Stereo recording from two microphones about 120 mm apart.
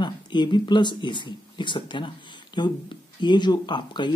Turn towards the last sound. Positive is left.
turn(degrees=40)  # may be behind; listen again after turning